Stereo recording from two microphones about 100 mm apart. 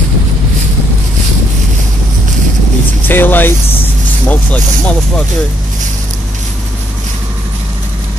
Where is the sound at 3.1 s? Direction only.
20° left (ahead or behind).